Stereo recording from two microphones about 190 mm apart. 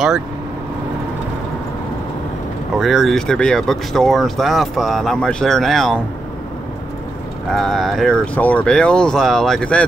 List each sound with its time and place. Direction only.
2.8 s speech: centre (ahead or behind)
7.5 s speech: centre (ahead or behind)